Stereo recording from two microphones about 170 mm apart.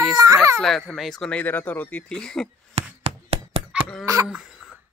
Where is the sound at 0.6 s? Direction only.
Centre (ahead or behind).